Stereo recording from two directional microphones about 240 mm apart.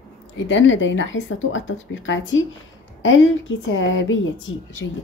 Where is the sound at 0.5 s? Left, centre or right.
Left.